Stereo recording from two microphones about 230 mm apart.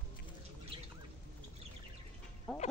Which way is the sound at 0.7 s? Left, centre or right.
Right.